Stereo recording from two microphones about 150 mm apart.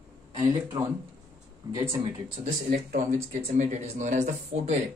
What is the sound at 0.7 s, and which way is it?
Speech, 35° right (ahead or behind).